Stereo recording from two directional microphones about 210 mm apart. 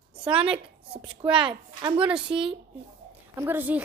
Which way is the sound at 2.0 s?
5° right (ahead or behind).